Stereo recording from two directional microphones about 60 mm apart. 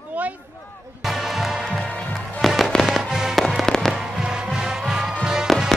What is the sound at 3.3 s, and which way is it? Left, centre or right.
Fireworks, centre.